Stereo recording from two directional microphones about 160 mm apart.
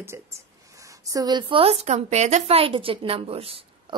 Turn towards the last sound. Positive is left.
turn(degrees=-35)  # may be behind; listen again after turning